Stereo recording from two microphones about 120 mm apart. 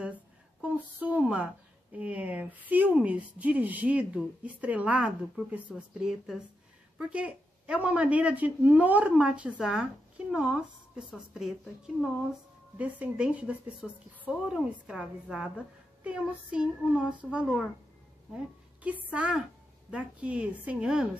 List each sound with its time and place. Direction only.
0.0 s a woman's voice: 10° right (ahead or behind)
18.3 s a sound: 10° right (ahead or behind)
19.0 s a woman's voice: 10° right (ahead or behind)